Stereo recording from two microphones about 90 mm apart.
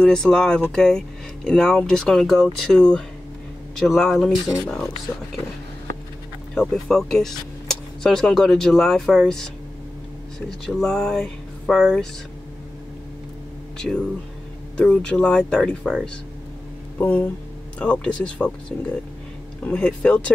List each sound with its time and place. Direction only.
0.0 s speech: 5° left (ahead or behind)
6.5 s speech: 5° left (ahead or behind)
10.8 s a sound: 5° left (ahead or behind)
13.7 s speech: 5° left (ahead or behind)
17.0 s speech: 20° left (ahead or behind)